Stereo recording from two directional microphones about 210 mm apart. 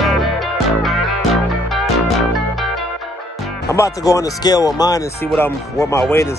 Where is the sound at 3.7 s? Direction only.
15° left (ahead or behind).